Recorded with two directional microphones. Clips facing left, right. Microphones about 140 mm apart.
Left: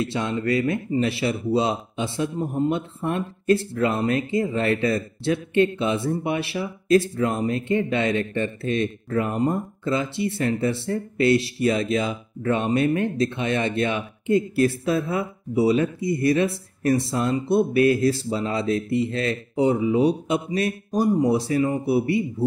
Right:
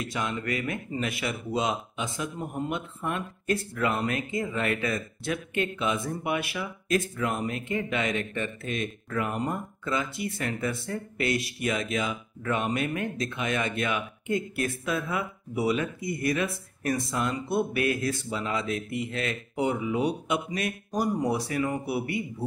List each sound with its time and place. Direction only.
0.0 s speech: 30° left (ahead or behind)